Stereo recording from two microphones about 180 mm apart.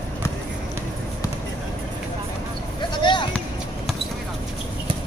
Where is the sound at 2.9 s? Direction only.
25° left (ahead or behind).